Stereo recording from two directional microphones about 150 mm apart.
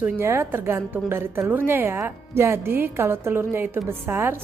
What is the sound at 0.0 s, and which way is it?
A woman's voice, 15° right (ahead or behind).